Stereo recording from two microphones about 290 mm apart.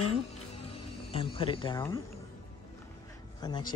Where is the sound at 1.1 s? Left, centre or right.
Centre.